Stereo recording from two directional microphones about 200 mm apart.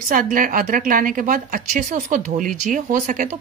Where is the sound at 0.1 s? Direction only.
45° right (ahead or behind).